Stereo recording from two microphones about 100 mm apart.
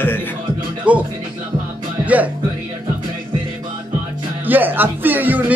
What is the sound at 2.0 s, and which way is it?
Music, 15° right (ahead or behind).